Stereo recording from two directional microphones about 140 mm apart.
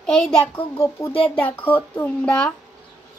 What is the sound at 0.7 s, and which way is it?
Speech, 20° left (ahead or behind).